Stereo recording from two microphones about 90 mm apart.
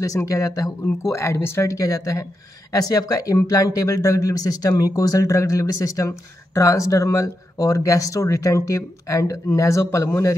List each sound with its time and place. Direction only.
0.0 s speech: 40° left (ahead or behind)